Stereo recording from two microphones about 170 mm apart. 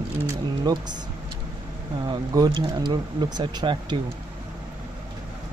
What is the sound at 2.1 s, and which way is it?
Speech, 25° right (ahead or behind).